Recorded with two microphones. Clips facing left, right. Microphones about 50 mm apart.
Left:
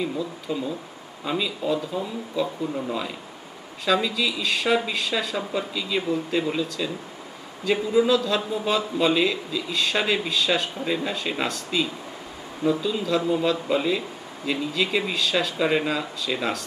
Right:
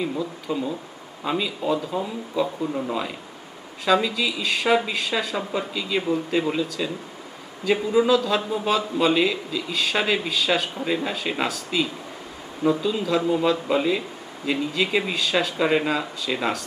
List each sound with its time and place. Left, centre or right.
0.0 s a man's voice: centre